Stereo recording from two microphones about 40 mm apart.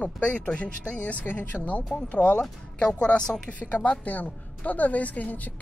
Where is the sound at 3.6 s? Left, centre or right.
Left.